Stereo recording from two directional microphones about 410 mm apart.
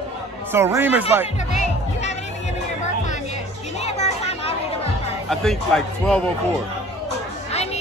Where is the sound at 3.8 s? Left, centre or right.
Centre.